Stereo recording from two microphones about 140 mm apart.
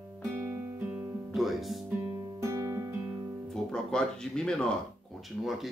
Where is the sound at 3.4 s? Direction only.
5° left (ahead or behind).